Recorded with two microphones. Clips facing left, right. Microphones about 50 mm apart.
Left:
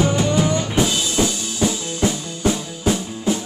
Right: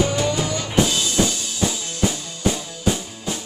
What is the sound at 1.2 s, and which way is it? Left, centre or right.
Music, centre.